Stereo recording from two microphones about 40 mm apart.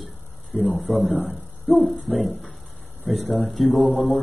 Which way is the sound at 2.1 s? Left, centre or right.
Right.